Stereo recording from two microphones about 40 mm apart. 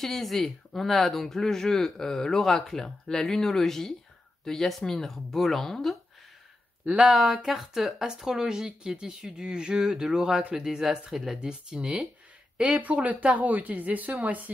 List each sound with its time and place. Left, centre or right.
0.0 s speech: centre
7.4 s speech: centre
11.3 s speech: right
12.8 s speech: right